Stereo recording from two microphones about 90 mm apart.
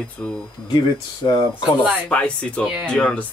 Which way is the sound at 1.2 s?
45° left (ahead or behind).